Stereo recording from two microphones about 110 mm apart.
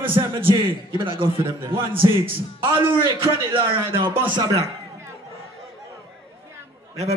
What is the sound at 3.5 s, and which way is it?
Speech, 20° right (ahead or behind).